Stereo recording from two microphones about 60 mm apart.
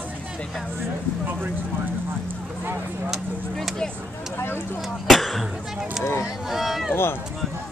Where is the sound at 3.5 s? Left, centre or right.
Centre.